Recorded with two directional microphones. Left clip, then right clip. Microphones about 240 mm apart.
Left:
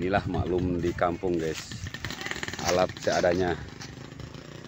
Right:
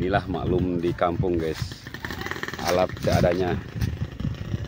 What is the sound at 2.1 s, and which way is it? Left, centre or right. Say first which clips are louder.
Motorcycle: right 3 dB; left.